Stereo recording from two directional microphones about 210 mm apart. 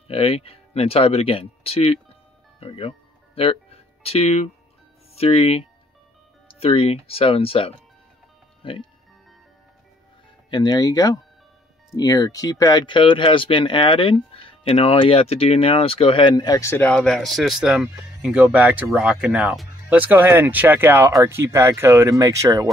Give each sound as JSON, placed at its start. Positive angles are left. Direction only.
{"t": 0.1, "sound": "speech", "side_deg": 30}
{"t": 2.6, "sound": "music", "side_deg": 30}
{"t": 5.1, "sound": "speech", "side_deg": 30}
{"t": 10.5, "sound": "speech", "side_deg": 20}